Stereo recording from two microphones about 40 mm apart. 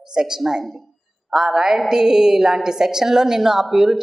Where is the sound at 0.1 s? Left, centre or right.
Centre.